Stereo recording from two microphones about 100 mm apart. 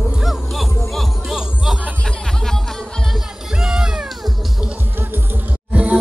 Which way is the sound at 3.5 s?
5° right (ahead or behind).